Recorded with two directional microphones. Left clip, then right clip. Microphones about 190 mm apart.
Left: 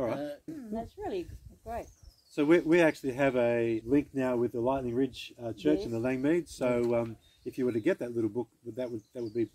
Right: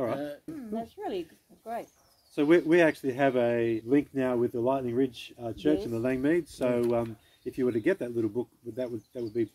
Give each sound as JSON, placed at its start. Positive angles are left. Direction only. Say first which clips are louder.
{"t": 0.6, "sound": "speech", "louder": "right 4 dB", "side_deg": -20}
{"t": 2.3, "sound": "speech", "louder": "right 2 dB", "side_deg": 25}